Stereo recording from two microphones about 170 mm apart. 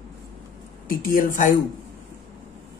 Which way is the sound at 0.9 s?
55° left (ahead or behind).